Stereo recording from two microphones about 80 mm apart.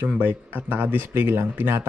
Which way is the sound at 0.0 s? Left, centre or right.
Centre.